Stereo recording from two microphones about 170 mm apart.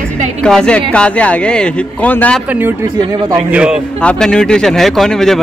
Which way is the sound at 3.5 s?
5° right (ahead or behind).